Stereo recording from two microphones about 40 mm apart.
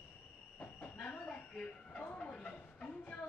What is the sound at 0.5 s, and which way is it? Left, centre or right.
Train, left.